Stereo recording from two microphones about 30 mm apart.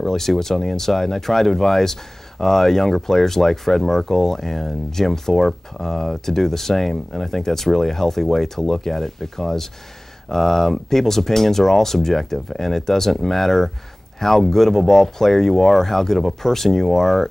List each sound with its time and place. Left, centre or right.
0.0 s speech: centre